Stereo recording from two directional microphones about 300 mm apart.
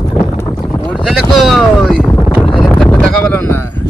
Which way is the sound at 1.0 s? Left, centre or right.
Centre.